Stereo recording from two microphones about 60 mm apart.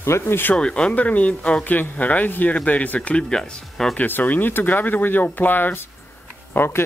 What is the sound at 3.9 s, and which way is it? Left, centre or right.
Speech, left.